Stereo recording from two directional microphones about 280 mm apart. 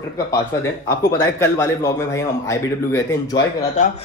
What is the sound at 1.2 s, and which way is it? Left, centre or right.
A man's voice, centre.